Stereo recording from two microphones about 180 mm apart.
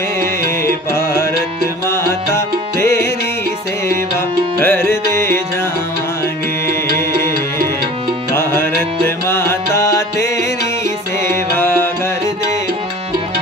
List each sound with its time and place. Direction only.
0.9 s music: 15° left (ahead or behind)
2.3 s music: 15° left (ahead or behind)
4.6 s music: 10° left (ahead or behind)
8.4 s music: 15° left (ahead or behind)
11.5 s music: 15° left (ahead or behind)